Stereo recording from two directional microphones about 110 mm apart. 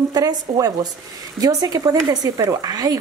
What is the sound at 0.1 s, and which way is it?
Speech, 35° right (ahead or behind).